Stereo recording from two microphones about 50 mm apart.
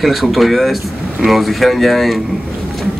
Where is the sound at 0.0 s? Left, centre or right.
Centre.